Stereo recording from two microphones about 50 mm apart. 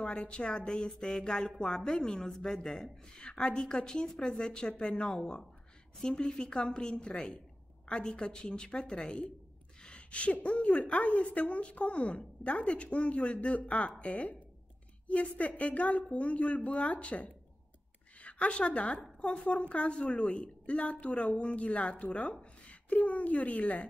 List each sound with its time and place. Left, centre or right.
0.0 s a woman's voice: centre